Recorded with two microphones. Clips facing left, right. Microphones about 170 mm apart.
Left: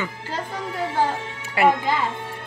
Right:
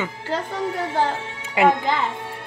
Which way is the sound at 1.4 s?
20° right (ahead or behind).